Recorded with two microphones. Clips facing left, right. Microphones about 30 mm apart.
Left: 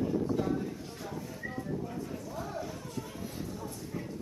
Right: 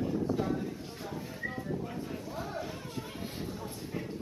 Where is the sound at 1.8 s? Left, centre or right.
Right.